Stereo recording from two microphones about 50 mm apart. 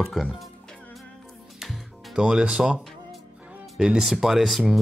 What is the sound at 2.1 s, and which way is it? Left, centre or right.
Speech, centre.